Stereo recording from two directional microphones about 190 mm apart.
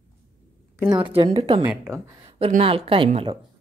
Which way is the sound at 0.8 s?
25° right (ahead or behind).